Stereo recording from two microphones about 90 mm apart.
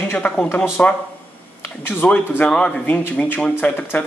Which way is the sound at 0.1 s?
20° left (ahead or behind).